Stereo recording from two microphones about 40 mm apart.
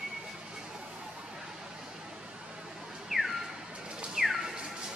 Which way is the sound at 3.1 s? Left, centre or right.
Centre.